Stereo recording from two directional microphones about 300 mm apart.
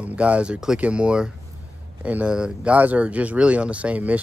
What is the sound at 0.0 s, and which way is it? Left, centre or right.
Speech, centre.